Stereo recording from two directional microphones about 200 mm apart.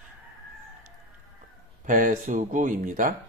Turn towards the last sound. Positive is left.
turn(degrees=-40)  # may be behind; listen again after turning